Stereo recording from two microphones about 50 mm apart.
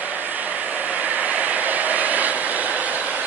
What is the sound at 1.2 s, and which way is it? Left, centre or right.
Vehicle, right.